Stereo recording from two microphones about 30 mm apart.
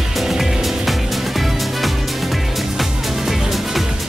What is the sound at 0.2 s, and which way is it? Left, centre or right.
Music, centre.